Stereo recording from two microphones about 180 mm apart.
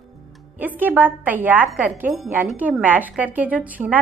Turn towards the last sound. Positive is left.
turn(degrees=-10)  # may be behind; listen again after turning